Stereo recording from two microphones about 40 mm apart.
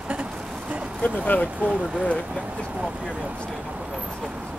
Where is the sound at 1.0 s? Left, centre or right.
Left.